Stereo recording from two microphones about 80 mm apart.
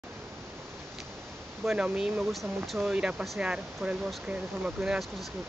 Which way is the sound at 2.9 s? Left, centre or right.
Centre.